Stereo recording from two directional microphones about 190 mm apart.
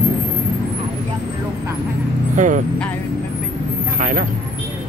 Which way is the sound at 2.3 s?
40° right (ahead or behind).